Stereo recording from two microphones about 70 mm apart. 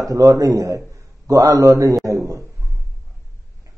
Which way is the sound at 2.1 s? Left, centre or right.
Right.